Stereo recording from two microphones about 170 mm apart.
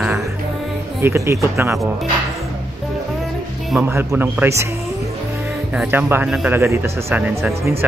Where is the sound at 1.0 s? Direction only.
15° right (ahead or behind).